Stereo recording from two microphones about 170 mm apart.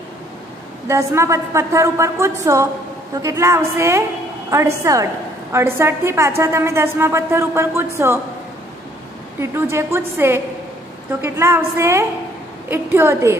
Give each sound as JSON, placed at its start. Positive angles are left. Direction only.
{"t": 0.8, "sound": "a woman's voice", "side_deg": -15}
{"t": 9.4, "sound": "a woman's voice", "side_deg": -15}